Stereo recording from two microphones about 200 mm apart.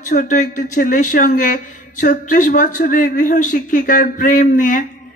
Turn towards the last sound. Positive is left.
turn(degrees=40)  # may be behind; listen again after turning